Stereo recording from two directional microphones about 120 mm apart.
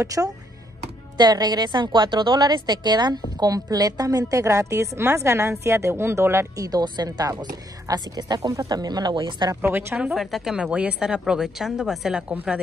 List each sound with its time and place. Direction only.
0.0 s a woman's voice: 25° right (ahead or behind)
6.7 s a woman's voice: 35° right (ahead or behind)
9.6 s a woman's voice: 15° right (ahead or behind)
9.9 s a woman's voice: 5° right (ahead or behind)